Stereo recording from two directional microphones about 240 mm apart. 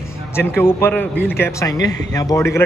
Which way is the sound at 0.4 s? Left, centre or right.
Centre.